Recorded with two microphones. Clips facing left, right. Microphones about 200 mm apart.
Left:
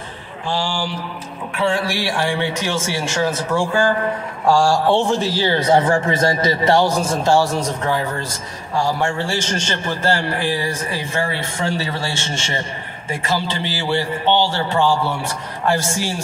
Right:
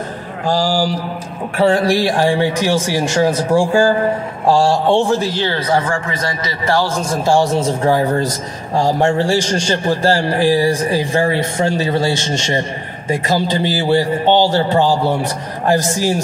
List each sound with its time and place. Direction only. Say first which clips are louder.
0.5 s a man's voice: right 7 dB; 40° right (ahead or behind); by 4.9 s 25° right (ahead or behind)
4.9 s a man's voice: right 3 dB; 5° right (ahead or behind)
5.7 s a man's voice: left 2 dB; 20° left (ahead or behind)
7.2 s a man's voice: right 2 dB; 15° right (ahead or behind)
7.5 s speech: right 6 dB; 30° right (ahead or behind)